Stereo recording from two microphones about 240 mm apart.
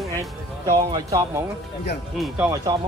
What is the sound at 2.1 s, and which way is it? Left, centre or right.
Speech, centre.